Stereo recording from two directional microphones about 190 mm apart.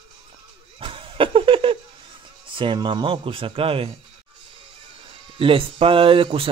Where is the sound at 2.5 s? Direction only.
25° right (ahead or behind).